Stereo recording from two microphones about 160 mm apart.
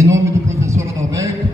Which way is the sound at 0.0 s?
20° right (ahead or behind).